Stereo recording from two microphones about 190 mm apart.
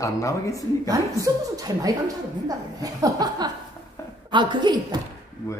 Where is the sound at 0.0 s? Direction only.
15° left (ahead or behind).